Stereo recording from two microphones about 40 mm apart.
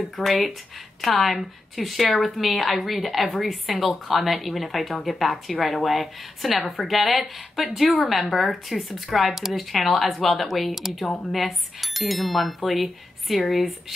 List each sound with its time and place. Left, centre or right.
0.1 s speech: centre
6.5 s a woman's voice: centre
6.9 s speech: centre